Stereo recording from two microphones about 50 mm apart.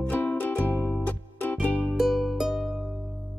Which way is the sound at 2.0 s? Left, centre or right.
Centre.